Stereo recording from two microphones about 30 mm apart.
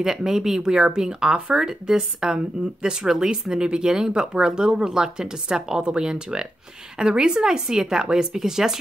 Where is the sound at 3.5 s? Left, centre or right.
Right.